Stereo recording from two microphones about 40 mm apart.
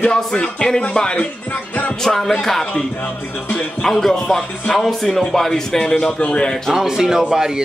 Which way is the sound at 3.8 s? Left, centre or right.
Centre.